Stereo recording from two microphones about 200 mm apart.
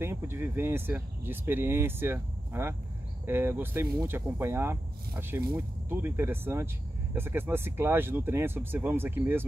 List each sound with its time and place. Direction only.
0.0 s speech: 10° right (ahead or behind)